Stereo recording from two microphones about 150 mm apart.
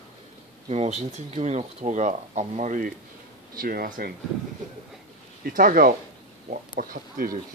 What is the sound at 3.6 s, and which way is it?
Speech, 75° right (ahead or behind).